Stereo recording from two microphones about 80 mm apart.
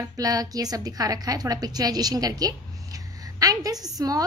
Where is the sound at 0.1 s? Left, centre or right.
Right.